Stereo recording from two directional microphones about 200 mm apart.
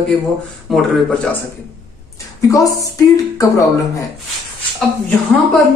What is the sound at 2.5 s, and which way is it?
Speech, 15° left (ahead or behind).